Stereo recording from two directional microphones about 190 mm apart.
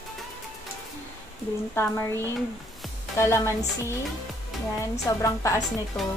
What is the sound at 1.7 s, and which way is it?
A woman's voice, 10° left (ahead or behind).